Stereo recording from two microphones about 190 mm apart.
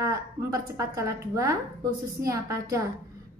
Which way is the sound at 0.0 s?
15° right (ahead or behind).